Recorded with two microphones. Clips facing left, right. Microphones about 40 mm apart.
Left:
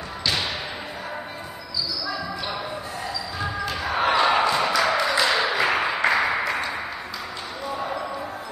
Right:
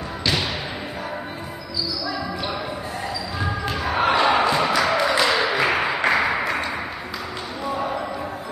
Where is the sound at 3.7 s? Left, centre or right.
Centre.